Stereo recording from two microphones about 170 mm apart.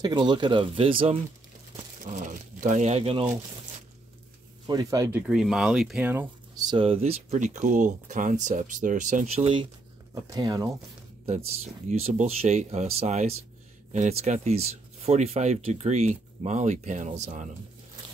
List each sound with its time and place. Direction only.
0.0 s speech: 25° right (ahead or behind)
2.0 s speech: 50° right (ahead or behind)
4.6 s speech: 20° right (ahead or behind)
5.2 s speech: 5° right (ahead or behind)
6.6 s speech: 30° right (ahead or behind)
10.1 s speech: 20° right (ahead or behind)
11.9 s speech: 40° right (ahead or behind)